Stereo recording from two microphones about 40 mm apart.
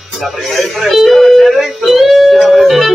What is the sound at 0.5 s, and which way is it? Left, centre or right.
Speech, centre.